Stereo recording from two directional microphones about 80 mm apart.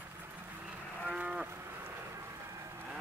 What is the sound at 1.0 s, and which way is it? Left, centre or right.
Moo, centre.